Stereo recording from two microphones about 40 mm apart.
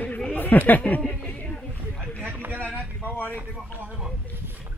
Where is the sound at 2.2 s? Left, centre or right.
Right.